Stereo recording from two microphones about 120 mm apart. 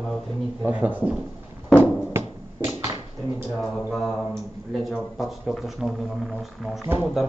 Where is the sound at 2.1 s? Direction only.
20° right (ahead or behind).